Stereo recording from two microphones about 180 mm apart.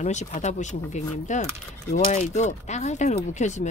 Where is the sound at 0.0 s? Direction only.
40° left (ahead or behind).